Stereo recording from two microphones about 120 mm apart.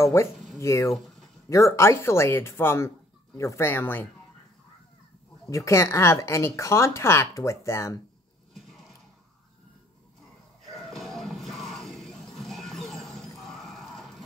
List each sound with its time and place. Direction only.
0.2 s speech: 20° left (ahead or behind)
0.9 s a sound: centre (ahead or behind)
1.5 s speech: 25° left (ahead or behind)
5.7 s speech: 25° left (ahead or behind)
10.7 s music: centre (ahead or behind)